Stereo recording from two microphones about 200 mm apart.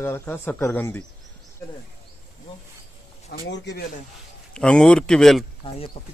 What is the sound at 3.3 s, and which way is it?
Speech, 60° left (ahead or behind).